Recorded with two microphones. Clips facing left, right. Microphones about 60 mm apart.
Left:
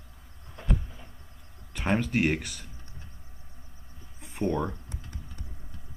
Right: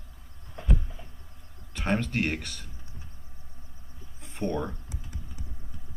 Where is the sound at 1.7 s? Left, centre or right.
Centre.